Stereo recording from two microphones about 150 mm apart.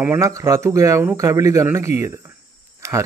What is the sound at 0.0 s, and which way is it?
A man's voice, 20° right (ahead or behind).